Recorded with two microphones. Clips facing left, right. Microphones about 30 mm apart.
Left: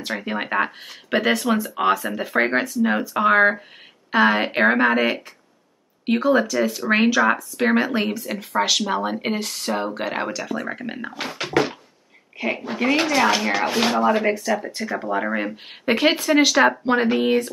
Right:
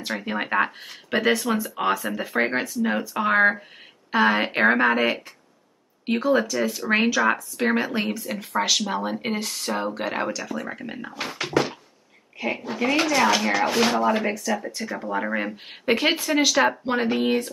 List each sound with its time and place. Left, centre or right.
0.2 s speech: centre
11.4 s cupboard open or close: centre
12.6 s speech: left
14.2 s speech: left